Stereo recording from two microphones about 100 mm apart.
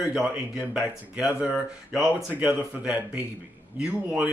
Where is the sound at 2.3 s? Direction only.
15° right (ahead or behind).